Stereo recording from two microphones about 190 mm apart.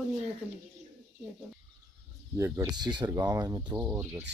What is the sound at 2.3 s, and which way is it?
Speech, 15° right (ahead or behind).